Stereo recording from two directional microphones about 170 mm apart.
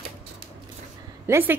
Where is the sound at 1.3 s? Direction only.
15° right (ahead or behind).